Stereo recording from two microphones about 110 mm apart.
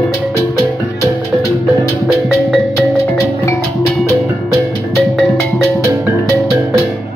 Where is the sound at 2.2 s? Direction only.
Centre (ahead or behind).